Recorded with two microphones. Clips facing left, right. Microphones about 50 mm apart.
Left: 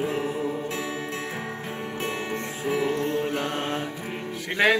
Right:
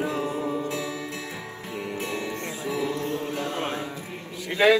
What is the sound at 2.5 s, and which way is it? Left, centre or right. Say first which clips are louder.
Mantra: left 4 dB; left.